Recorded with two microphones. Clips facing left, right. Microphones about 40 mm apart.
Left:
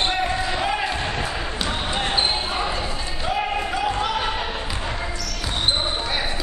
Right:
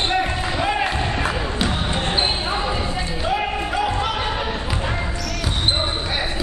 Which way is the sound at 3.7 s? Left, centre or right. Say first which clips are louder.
Right 3 dB; centre.